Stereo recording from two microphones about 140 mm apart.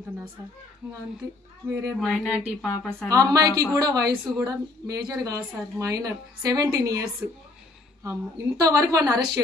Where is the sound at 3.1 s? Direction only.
25° right (ahead or behind).